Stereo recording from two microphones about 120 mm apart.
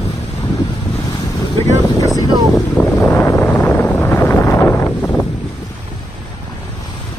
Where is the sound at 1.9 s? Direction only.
30° left (ahead or behind).